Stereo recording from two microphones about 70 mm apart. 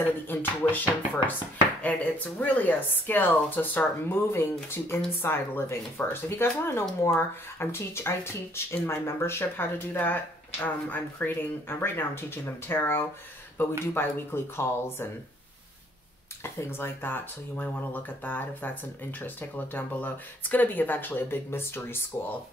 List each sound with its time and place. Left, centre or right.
0.0 s speech: left
16.5 s speech: left